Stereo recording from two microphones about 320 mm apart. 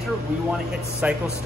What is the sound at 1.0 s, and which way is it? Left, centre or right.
Speech, centre.